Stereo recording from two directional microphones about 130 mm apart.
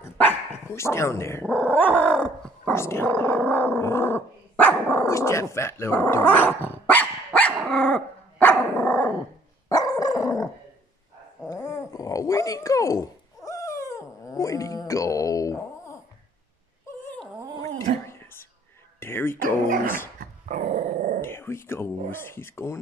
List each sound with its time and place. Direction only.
0.2 s speech: 15° left (ahead or behind)
2.7 s dog: 20° left (ahead or behind)
9.7 s dog: 30° left (ahead or behind)
17.6 s a sound: 20° left (ahead or behind)
18.9 s music: 15° left (ahead or behind)
20.2 s dog: 80° right
21.2 s a sound: 20° left (ahead or behind)